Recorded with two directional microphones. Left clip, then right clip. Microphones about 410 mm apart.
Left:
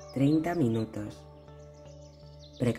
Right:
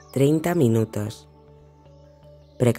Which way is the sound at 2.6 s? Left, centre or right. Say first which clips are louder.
Right 9 dB; right.